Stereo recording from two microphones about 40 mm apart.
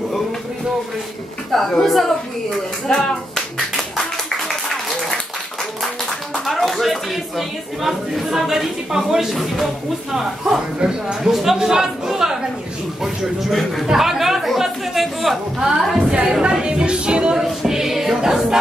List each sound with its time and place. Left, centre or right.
1.5 s speech: centre
2.9 s speech: centre
3.3 s finger snapping: centre
4.5 s applause: centre
6.4 s a woman's voice: centre
10.8 s speech: right
11.2 s a woman's voice: centre
16.3 s speech: centre
17.5 s music: centre